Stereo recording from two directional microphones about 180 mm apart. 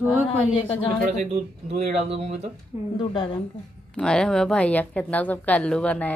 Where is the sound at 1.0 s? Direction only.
40° right (ahead or behind).